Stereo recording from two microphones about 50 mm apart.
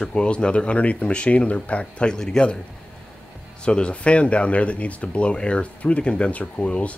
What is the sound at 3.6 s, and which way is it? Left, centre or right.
Speech, centre.